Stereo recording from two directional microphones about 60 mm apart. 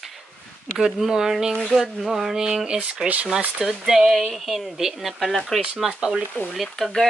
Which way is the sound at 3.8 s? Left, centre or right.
Centre.